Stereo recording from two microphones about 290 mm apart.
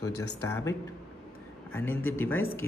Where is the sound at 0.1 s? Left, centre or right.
Left.